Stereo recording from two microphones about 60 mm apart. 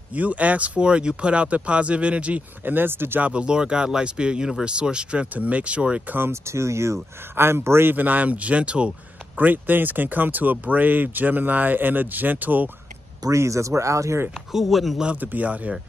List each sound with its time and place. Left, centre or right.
0.1 s speech: right
2.7 s speech: right
3.2 s speech: centre
6.0 s speech: right
6.3 s speech: right
7.9 s speech: right
9.4 s speech: right
13.2 s speech: right
14.5 s speech: centre
15.1 s speech: right